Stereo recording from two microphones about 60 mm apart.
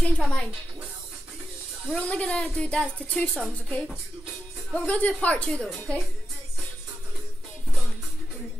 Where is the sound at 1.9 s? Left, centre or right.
Centre.